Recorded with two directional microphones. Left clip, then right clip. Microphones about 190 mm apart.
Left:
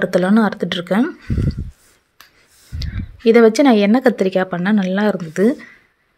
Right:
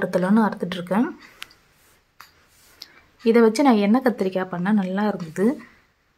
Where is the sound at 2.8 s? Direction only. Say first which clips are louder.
Left 7 dB; 20° left (ahead or behind).